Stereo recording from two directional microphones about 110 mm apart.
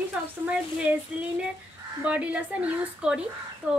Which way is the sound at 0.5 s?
10° right (ahead or behind).